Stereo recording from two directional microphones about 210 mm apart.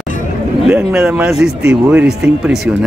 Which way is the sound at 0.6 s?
5° right (ahead or behind).